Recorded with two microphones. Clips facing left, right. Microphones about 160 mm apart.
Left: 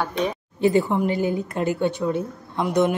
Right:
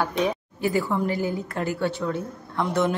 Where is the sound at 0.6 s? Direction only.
25° left (ahead or behind).